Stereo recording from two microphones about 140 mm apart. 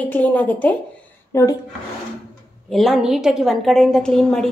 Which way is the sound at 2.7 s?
Centre (ahead or behind).